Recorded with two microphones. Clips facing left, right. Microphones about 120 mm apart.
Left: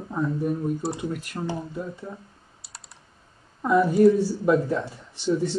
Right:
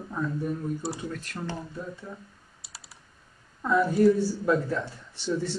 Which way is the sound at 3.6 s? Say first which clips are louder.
Left 4 dB; 15° left (ahead or behind).